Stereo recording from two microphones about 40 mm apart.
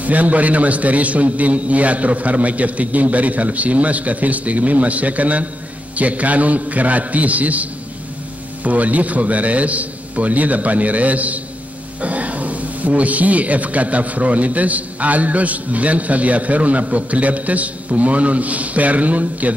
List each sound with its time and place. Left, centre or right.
0.0 s a man's voice: right
8.6 s a man's voice: right